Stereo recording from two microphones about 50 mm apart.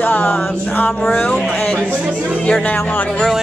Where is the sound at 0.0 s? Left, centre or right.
Left.